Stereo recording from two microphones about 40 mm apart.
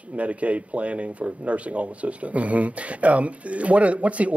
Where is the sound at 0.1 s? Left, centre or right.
Right.